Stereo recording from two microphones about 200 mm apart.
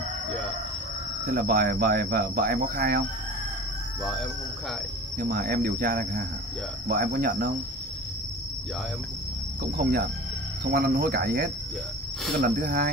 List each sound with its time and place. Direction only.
1.3 s speech: 50° right (ahead or behind)
4.0 s speech: centre (ahead or behind)
5.2 s speech: 50° right (ahead or behind)
10.6 s speech: 50° right (ahead or behind)